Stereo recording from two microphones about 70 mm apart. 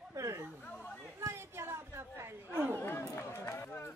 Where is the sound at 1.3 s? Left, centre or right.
Right.